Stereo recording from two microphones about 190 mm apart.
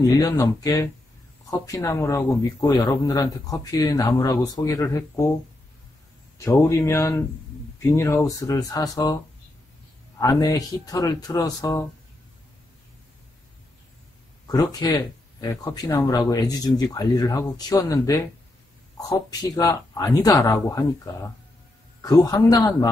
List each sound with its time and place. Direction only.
0.0 s speech: 15° left (ahead or behind)
6.3 s speech: 15° left (ahead or behind)
10.9 s speech: 20° left (ahead or behind)
14.5 s speech: 20° left (ahead or behind)